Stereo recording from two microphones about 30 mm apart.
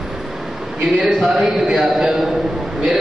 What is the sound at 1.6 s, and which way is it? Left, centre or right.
Speech, centre.